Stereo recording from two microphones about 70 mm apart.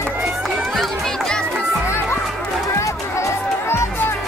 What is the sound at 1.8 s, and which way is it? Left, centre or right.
Music, left.